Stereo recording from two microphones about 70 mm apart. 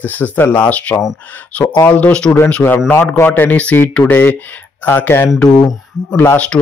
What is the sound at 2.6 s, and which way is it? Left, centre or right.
Speech, left.